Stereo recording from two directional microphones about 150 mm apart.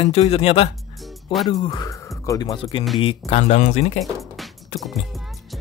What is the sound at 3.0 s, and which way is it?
Speech, 40° left (ahead or behind).